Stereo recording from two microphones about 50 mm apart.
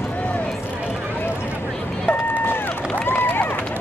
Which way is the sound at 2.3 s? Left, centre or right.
Left.